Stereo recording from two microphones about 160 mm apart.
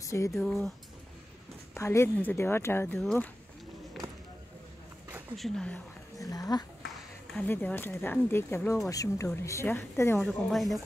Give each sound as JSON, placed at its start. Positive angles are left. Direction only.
{"t": 0.0, "sound": "speech", "side_deg": 20}
{"t": 1.8, "sound": "speech", "side_deg": 15}
{"t": 3.0, "sound": "speech", "side_deg": 0}
{"t": 5.3, "sound": "speech", "side_deg": 5}
{"t": 6.1, "sound": "speech", "side_deg": 20}
{"t": 7.3, "sound": "speech", "side_deg": 10}
{"t": 10.2, "sound": "speech", "side_deg": 0}